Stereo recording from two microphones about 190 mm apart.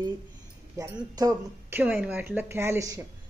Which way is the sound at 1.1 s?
15° right (ahead or behind).